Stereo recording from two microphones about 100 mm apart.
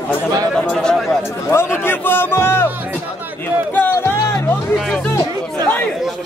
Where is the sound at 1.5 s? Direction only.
25° left (ahead or behind).